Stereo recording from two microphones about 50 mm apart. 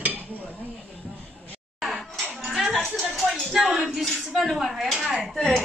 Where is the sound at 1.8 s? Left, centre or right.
Centre.